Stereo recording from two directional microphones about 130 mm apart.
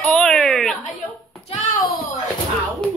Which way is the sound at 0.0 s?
5° left (ahead or behind).